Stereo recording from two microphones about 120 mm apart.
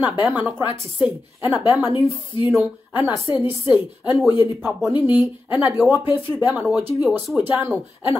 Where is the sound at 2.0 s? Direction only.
45° left (ahead or behind).